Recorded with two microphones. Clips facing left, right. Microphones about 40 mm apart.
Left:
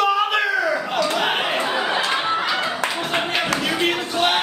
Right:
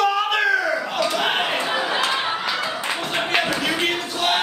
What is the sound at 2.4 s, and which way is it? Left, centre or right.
Clapping, left.